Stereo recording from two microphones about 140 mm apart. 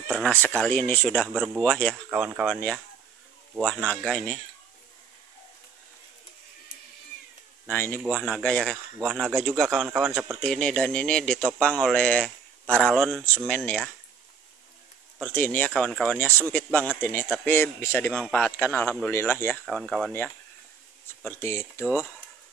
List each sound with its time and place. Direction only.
0.7 s speech: 10° left (ahead or behind)
2.0 s speech: 10° right (ahead or behind)
2.4 s speech: 5° left (ahead or behind)
7.6 s speech: 15° left (ahead or behind)
8.0 s speech: 5° left (ahead or behind)
15.1 s speech: 10° left (ahead or behind)
19.6 s speech: centre (ahead or behind)
21.2 s speech: 15° left (ahead or behind)